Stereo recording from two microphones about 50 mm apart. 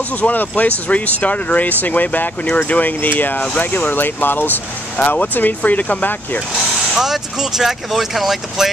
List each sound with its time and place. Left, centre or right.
0.2 s speech: left
4.9 s speech: left
7.0 s speech: centre